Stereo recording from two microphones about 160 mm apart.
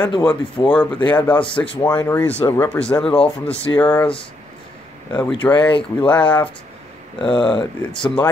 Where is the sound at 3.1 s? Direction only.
35° left (ahead or behind).